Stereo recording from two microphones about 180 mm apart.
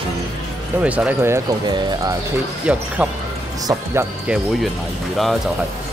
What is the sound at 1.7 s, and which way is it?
Speech, 25° right (ahead or behind).